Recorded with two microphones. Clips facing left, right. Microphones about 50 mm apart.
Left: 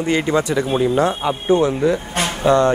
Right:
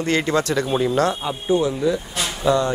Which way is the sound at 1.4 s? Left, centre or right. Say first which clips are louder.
Left 3 dB; left.